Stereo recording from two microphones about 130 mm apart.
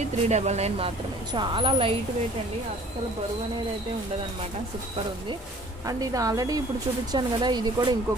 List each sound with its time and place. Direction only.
0.3 s a woman's voice: 60° right (ahead or behind)
5.9 s a woman's voice: 25° right (ahead or behind)